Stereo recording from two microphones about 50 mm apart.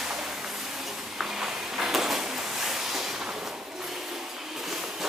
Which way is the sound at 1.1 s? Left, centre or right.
Centre.